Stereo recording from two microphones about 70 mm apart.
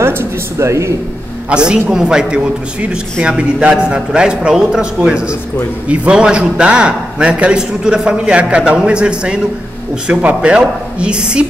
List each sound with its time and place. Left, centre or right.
0.0 s speech: right
1.5 s a man's voice: centre